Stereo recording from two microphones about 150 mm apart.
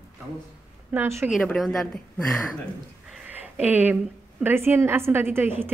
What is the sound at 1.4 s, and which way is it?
Speech, 5° left (ahead or behind).